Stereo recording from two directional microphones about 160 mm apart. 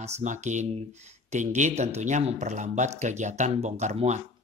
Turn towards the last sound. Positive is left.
turn(degrees=-45)  # may be behind; listen again after turning